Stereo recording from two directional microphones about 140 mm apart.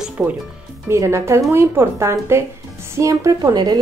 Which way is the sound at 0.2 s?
5° right (ahead or behind).